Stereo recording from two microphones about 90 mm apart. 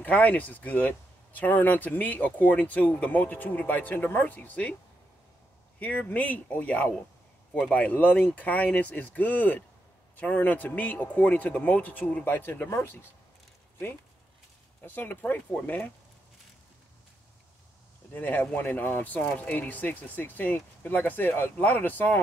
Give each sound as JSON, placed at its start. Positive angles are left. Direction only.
{"t": 0.0, "sound": "speech", "side_deg": 20}
{"t": 5.8, "sound": "speech", "side_deg": 20}
{"t": 14.9, "sound": "speech", "side_deg": 20}
{"t": 18.1, "sound": "speech", "side_deg": 20}